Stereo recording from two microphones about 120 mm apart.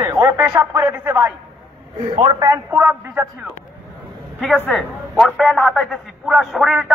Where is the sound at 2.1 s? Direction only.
40° right (ahead or behind).